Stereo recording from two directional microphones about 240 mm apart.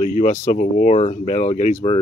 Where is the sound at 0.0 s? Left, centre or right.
Left.